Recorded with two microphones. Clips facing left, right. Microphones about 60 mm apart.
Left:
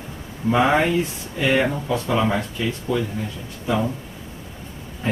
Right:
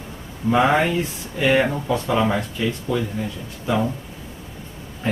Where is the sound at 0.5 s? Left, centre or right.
Centre.